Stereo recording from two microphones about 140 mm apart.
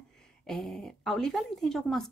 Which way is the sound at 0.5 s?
5° left (ahead or behind).